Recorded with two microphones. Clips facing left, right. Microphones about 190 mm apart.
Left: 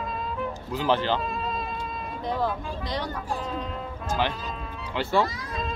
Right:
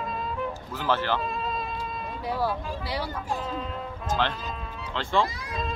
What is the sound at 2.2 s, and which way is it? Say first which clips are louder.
Speech: left 1 dB; 10° right (ahead or behind).